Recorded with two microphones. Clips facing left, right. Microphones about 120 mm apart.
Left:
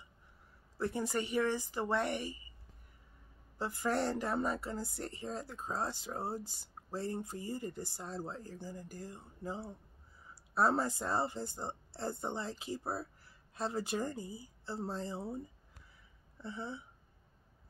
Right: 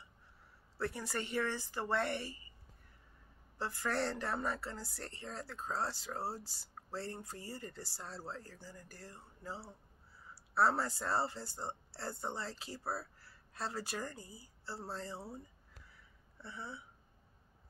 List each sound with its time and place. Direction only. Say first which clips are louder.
0.7 s speech: left 4 dB; 20° left (ahead or behind)
3.5 s speech: left 3 dB; 20° left (ahead or behind)